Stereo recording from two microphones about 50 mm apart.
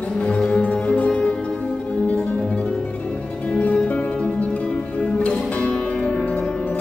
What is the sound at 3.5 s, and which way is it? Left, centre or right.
Music, left.